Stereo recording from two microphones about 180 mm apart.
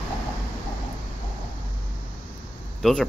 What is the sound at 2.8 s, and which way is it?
Speech, 5° left (ahead or behind).